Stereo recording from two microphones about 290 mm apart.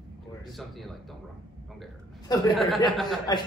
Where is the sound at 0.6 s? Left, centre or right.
Centre.